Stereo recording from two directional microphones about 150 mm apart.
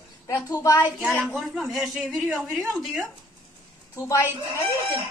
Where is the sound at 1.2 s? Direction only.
Centre (ahead or behind).